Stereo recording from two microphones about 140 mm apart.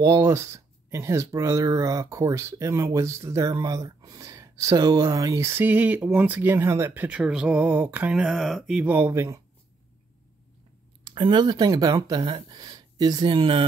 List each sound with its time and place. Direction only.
0.0 s speech: 20° right (ahead or behind); by 8.9 s 5° right (ahead or behind)
8.9 s speech: 20° right (ahead or behind)
11.1 s speech: 35° right (ahead or behind)